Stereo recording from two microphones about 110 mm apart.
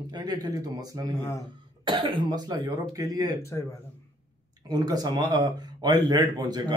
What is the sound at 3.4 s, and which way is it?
Speech, 25° left (ahead or behind).